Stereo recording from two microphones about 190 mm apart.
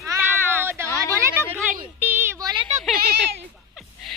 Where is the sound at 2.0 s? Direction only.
10° right (ahead or behind).